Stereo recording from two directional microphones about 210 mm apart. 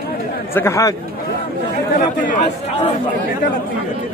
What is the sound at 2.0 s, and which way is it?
Speech, 35° left (ahead or behind).